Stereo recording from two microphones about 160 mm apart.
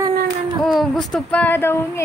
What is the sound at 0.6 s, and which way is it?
Speech, centre (ahead or behind).